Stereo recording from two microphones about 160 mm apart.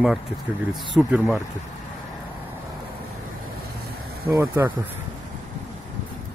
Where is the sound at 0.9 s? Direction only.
Centre (ahead or behind).